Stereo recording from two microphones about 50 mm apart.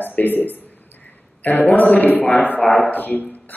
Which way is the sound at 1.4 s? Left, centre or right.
Left.